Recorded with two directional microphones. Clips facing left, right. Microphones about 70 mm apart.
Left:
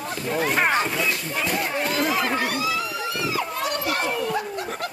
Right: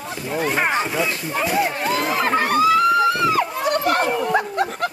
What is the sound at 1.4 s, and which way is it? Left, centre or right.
Speech, centre.